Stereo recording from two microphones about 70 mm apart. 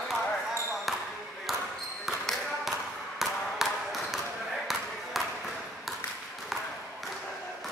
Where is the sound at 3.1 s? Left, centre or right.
Centre.